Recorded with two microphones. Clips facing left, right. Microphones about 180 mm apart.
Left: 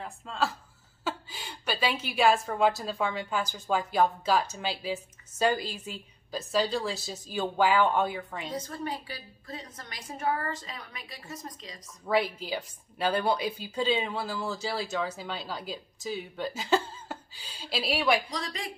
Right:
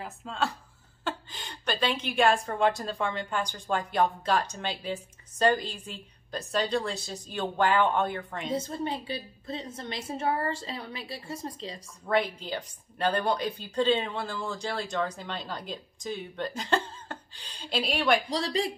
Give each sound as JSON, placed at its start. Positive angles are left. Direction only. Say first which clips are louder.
{"t": 0.0, "sound": "a woman's voice", "louder": "even", "side_deg": 0}
{"t": 8.5, "sound": "a woman's voice", "louder": "right 5 dB", "side_deg": -25}
{"t": 12.1, "sound": "a woman's voice", "louder": "even", "side_deg": 5}
{"t": 18.3, "sound": "speech", "louder": "right 8 dB", "side_deg": -30}